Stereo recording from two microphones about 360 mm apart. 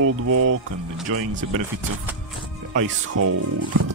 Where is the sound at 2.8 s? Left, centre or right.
Right.